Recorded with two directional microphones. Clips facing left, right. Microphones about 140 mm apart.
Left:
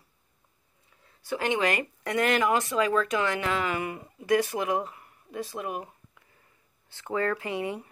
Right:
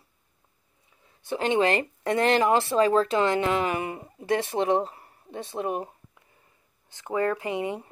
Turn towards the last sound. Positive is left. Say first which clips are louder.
# right 2 dB
turn(degrees=-20)  # may be behind; listen again after turning